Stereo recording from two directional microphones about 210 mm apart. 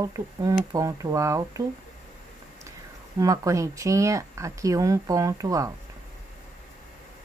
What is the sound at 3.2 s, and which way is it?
Speech, 15° right (ahead or behind).